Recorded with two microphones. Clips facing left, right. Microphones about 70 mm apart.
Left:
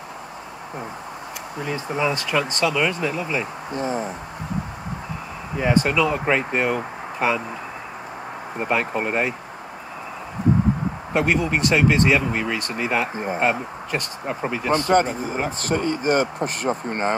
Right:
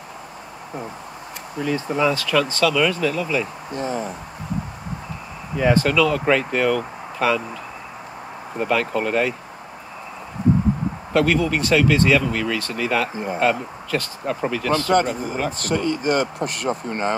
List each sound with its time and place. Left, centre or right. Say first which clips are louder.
1.6 s speech: right 3 dB; centre
5.6 s speech: right 2 dB; centre
8.5 s speech: right 2 dB; left
11.1 s speech: right 2 dB; left
13.1 s speech: even; left
13.4 s speech: right 3 dB; left
15.7 s speech: even; left